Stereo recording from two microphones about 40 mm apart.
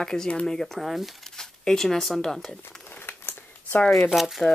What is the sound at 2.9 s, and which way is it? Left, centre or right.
Crumpling, left.